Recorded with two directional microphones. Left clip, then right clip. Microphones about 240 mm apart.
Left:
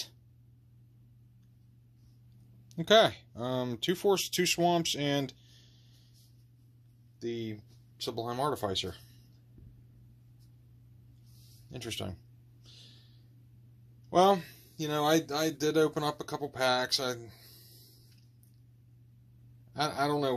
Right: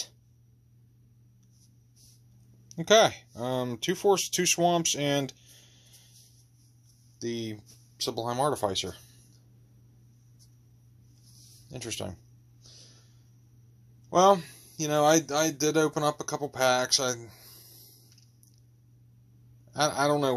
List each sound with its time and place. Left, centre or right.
2.7 s speech: centre
7.2 s speech: right
11.7 s speech: centre
14.0 s speech: centre
19.7 s speech: right